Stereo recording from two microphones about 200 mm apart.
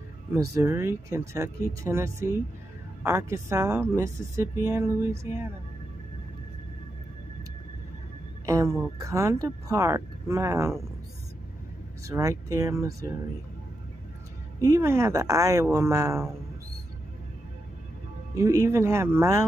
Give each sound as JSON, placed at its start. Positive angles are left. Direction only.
{"t": 0.3, "sound": "speech", "side_deg": -15}
{"t": 8.5, "sound": "speech", "side_deg": -15}
{"t": 12.1, "sound": "speech", "side_deg": -15}
{"t": 14.6, "sound": "speech", "side_deg": -15}
{"t": 18.3, "sound": "speech", "side_deg": -15}